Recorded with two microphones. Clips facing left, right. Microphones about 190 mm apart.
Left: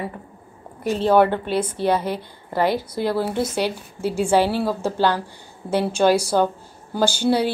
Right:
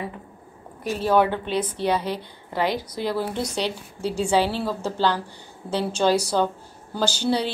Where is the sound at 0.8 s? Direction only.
25° left (ahead or behind).